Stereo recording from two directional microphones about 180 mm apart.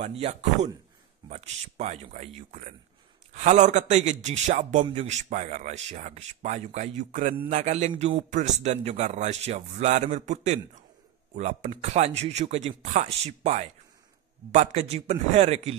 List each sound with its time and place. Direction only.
0.0 s speech: 35° right (ahead or behind)